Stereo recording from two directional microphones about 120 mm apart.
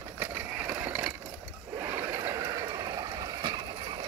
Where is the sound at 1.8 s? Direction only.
20° right (ahead or behind).